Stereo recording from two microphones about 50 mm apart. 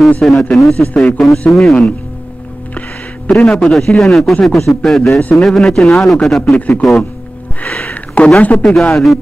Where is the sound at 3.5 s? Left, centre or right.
Centre.